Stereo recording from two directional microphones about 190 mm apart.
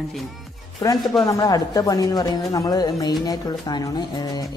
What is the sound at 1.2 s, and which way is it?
Speech, 15° left (ahead or behind).